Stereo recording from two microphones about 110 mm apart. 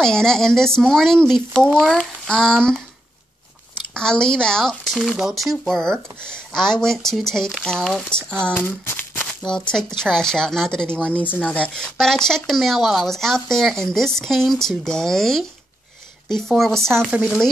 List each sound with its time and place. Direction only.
0.0 s speech: 5° left (ahead or behind)
3.9 s speech: 5° left (ahead or behind)
8.5 s a sound: 20° left (ahead or behind)
9.4 s speech: 5° left (ahead or behind)